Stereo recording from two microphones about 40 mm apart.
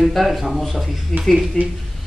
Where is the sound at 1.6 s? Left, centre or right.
Centre.